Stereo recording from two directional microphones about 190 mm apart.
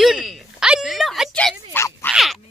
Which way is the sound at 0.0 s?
Centre (ahead or behind).